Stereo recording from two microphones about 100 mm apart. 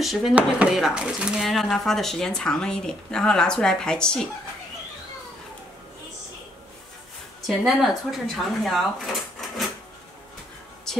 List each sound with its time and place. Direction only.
0.0 s a woman's voice: centre (ahead or behind)
0.3 s speech: 15° right (ahead or behind); by 4.3 s 5° left (ahead or behind)
7.4 s a woman's voice: centre (ahead or behind)